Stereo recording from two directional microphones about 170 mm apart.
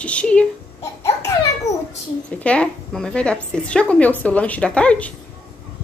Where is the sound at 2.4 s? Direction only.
5° left (ahead or behind).